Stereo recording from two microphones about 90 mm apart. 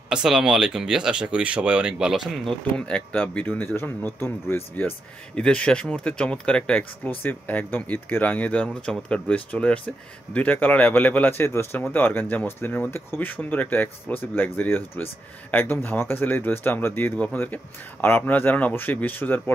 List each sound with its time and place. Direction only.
0.1 s speech: 5° right (ahead or behind)
2.8 s speech: 10° left (ahead or behind)
5.3 s speech: 10° left (ahead or behind)